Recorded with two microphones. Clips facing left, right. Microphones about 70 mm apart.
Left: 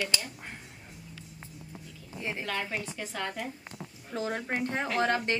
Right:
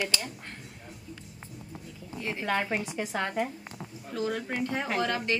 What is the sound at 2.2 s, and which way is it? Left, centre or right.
Speech, centre.